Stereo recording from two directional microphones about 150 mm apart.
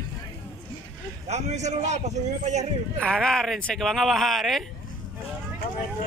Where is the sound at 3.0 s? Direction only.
5° left (ahead or behind).